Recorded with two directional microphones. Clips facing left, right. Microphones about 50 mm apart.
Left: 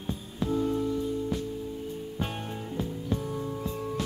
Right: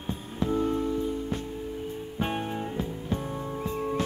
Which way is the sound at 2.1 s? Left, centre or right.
Right.